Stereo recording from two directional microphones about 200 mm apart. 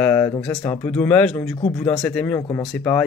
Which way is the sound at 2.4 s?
15° left (ahead or behind).